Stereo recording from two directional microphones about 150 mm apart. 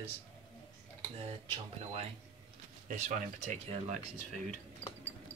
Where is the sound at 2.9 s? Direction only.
55° right (ahead or behind).